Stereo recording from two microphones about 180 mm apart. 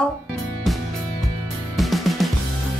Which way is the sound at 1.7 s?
Centre (ahead or behind).